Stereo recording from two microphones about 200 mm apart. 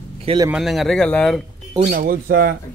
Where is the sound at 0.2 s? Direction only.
25° right (ahead or behind).